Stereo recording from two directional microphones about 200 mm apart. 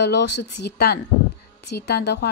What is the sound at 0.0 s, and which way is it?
A woman's voice, 60° left (ahead or behind).